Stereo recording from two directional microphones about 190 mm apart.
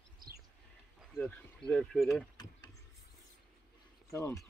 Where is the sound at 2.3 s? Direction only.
20° left (ahead or behind).